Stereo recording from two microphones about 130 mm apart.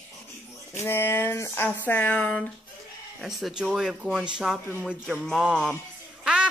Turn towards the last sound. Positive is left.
turn(degrees=-10)  # may be behind; listen again after turning